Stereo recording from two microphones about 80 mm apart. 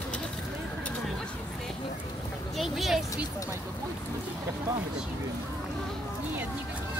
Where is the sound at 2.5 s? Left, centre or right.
Centre.